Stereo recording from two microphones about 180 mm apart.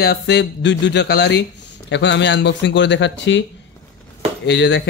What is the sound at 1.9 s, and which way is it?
Speech, 80° left.